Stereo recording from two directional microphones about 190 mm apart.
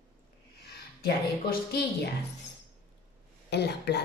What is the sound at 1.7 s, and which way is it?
Speech, 60° left (ahead or behind).